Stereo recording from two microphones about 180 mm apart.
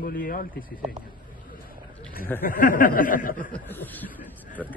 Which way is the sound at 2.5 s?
50° left (ahead or behind).